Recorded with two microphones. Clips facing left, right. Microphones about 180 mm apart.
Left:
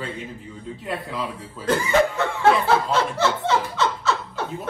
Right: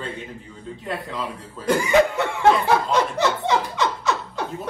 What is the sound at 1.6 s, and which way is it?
Speech, 15° right (ahead or behind).